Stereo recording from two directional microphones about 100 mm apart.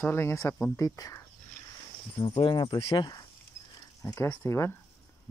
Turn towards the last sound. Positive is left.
turn(degrees=25)  # may be behind; listen again after turning